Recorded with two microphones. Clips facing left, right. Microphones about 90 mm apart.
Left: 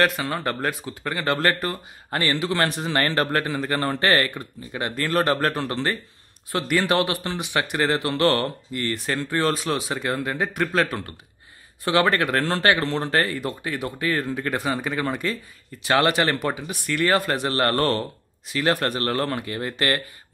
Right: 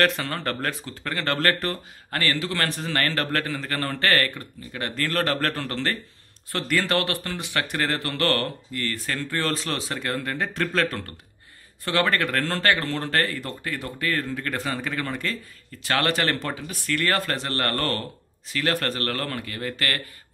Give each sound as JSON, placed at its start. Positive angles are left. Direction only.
{"t": 0.0, "sound": "speech", "side_deg": 10}